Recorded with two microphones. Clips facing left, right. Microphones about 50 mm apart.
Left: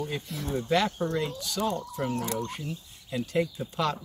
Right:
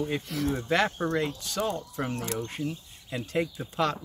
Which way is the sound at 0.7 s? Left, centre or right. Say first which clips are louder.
Left 1 dB; right.